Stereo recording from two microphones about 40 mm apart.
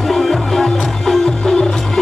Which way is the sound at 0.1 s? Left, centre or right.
Centre.